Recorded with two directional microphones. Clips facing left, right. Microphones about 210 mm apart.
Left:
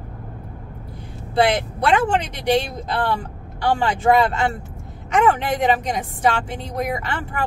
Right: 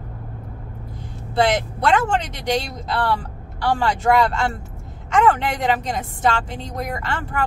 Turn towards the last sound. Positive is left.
turn(degrees=15)  # may be behind; listen again after turning